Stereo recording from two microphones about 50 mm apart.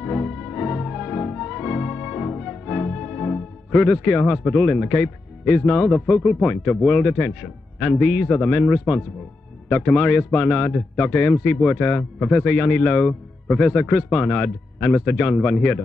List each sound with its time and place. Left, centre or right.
0.0 s music: centre
3.7 s a man's voice: centre
12.4 s a man's voice: left